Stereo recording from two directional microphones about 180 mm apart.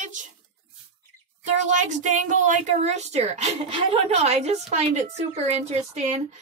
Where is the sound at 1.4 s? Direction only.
40° right (ahead or behind).